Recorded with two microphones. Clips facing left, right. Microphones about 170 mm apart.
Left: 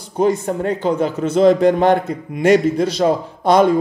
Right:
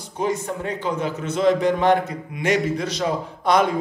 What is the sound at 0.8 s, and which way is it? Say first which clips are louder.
Speech: left 6 dB; 35° left (ahead or behind).